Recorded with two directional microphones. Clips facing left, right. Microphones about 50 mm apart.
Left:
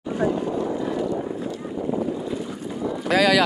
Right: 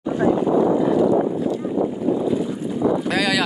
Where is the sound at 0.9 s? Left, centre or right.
Centre.